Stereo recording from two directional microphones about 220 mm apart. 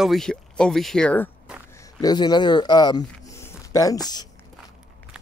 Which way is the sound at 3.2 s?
15° left (ahead or behind).